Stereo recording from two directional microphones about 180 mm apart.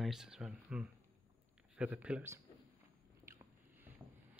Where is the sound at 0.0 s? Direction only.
5° right (ahead or behind).